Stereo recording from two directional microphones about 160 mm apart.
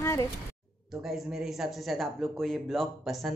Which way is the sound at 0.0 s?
20° left (ahead or behind).